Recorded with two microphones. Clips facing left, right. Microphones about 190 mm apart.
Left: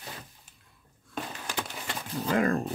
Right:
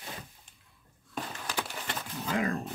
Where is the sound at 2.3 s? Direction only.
50° left (ahead or behind).